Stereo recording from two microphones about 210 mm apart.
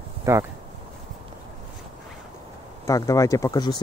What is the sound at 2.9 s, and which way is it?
Speech, 15° left (ahead or behind).